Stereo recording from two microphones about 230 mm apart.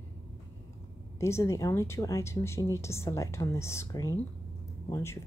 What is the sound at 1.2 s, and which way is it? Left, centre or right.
Speech, centre.